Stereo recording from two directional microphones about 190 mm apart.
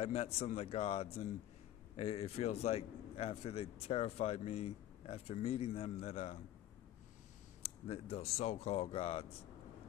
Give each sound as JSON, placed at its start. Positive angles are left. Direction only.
{"t": 0.0, "sound": "speech", "side_deg": 30}
{"t": 7.6, "sound": "speech", "side_deg": 35}